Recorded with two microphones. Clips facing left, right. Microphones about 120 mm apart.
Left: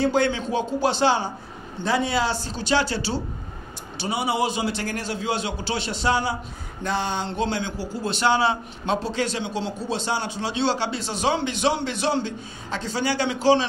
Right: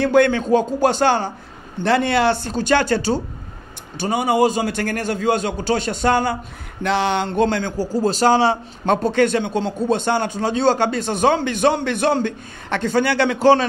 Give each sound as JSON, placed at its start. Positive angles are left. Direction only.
{"t": 0.0, "sound": "a man's voice", "side_deg": -60}
{"t": 1.8, "sound": "a man's voice", "side_deg": -65}
{"t": 6.8, "sound": "a sound", "side_deg": -80}
{"t": 7.2, "sound": "a man's voice", "side_deg": -50}
{"t": 8.8, "sound": "a man's voice", "side_deg": -55}